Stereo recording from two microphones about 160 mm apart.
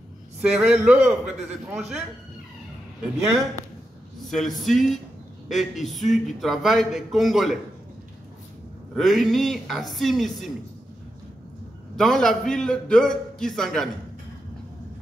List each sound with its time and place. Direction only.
0.4 s a man's voice: 5° right (ahead or behind)
4.3 s a man's voice: centre (ahead or behind)
8.9 s a man's voice: centre (ahead or behind)
12.0 s a man's voice: 5° left (ahead or behind)